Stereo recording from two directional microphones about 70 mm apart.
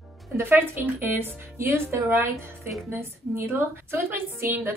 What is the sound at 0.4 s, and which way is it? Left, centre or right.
A woman's voice, right.